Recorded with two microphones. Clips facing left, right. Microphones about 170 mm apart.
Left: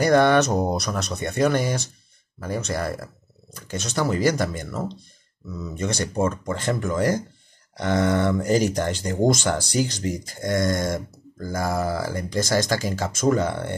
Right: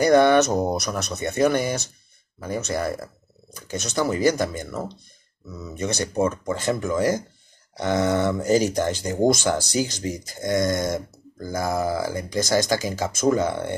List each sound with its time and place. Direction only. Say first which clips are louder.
0.1 s speech: right 1 dB; 15° right (ahead or behind)
8.2 s speech: even; 10° right (ahead or behind)